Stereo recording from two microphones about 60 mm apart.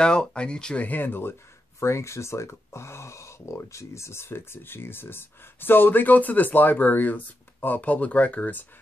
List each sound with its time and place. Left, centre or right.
0.0 s speech: centre
0.8 s speech: left
1.8 s speech: left